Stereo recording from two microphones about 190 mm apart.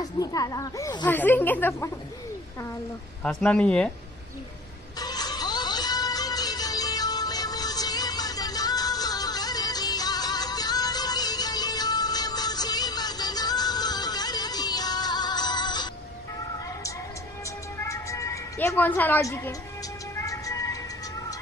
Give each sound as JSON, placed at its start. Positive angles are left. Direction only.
{"t": 0.0, "sound": "speech", "side_deg": 20}
{"t": 3.3, "sound": "speech", "side_deg": 5}
{"t": 4.9, "sound": "music", "side_deg": 20}
{"t": 17.8, "sound": "a sound", "side_deg": 15}
{"t": 20.2, "sound": "music", "side_deg": 15}